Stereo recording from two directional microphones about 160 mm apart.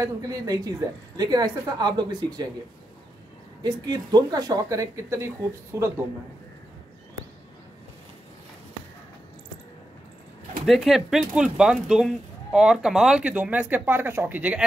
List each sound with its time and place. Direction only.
0.0 s speech: 20° right (ahead or behind)
3.6 s speech: 25° right (ahead or behind)
10.6 s speech: centre (ahead or behind)